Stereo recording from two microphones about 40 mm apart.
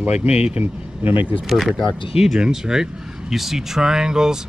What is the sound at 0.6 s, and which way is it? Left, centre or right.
Speech, right.